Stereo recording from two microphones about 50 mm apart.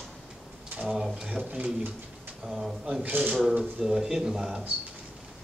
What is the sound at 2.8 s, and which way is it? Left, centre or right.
Speech, right.